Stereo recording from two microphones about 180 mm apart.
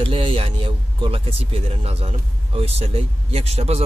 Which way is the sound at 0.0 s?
30° right (ahead or behind).